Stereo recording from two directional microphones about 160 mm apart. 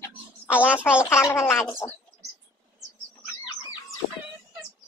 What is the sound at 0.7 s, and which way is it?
Speech, 5° right (ahead or behind).